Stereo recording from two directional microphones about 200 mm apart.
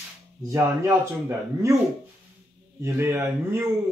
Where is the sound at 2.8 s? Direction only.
15° right (ahead or behind).